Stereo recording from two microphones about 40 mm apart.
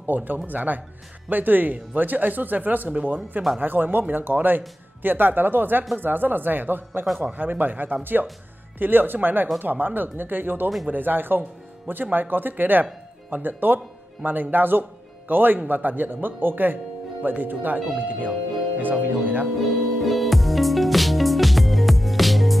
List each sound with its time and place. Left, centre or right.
0.0 s speech: right
3.6 s speech: right
20.0 s music: centre